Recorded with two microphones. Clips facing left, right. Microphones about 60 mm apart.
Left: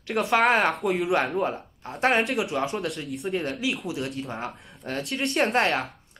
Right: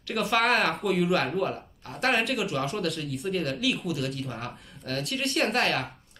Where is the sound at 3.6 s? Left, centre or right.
Centre.